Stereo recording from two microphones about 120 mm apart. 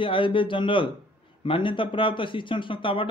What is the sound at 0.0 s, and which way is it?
Speech, 45° left (ahead or behind).